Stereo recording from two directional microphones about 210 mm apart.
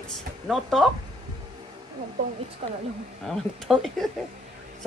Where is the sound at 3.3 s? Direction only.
Centre (ahead or behind).